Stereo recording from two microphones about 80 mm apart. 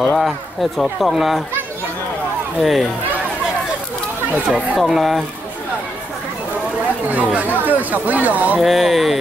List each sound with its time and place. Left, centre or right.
0.0 s speech: centre
2.6 s speech: centre
4.5 s speech: centre
7.1 s speech: centre
8.5 s speech: centre